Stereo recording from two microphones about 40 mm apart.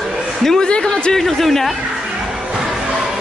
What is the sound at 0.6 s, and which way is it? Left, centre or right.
Speech, left.